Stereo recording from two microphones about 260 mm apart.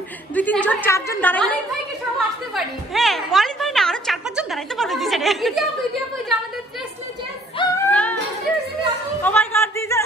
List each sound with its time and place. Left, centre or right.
0.3 s a woman's voice: centre
7.5 s singing: centre
9.2 s a sound: centre